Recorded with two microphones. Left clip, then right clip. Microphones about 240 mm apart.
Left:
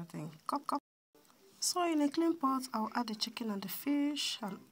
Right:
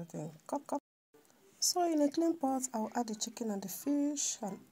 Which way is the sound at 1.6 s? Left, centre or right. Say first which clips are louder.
Right 2 dB; left.